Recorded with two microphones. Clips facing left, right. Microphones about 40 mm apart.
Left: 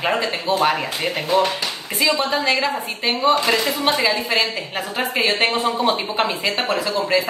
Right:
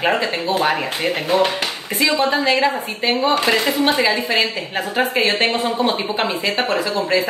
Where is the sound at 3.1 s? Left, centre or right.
Right.